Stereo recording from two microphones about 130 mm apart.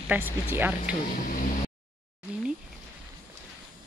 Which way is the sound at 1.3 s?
90° left.